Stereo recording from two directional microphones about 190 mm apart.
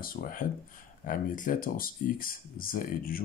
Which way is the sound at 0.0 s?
50° left (ahead or behind).